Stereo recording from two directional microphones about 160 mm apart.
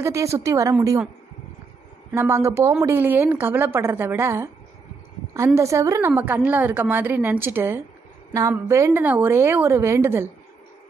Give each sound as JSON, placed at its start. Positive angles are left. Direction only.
{"t": 0.0, "sound": "speech", "side_deg": -20}
{"t": 2.1, "sound": "a woman's voice", "side_deg": -15}